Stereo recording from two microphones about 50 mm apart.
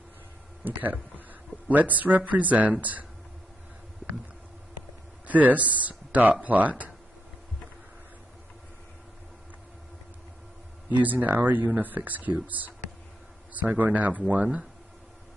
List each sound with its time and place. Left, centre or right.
1.7 s speech: right
5.2 s speech: right
10.9 s a man's voice: right